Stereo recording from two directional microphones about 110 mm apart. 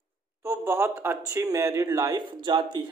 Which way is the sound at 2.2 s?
50° right (ahead or behind).